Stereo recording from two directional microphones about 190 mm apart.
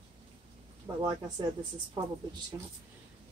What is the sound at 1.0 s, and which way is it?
Speech, 20° right (ahead or behind).